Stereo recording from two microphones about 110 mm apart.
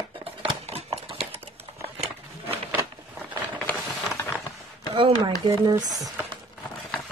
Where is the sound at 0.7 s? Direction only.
60° right (ahead or behind).